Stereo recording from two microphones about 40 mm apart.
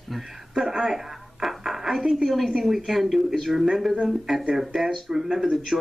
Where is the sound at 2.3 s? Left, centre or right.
Centre.